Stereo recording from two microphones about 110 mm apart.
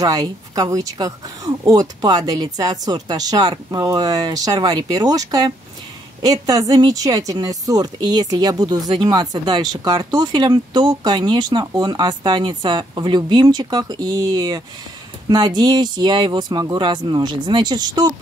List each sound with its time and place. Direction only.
0.0 s speech: 35° right (ahead or behind)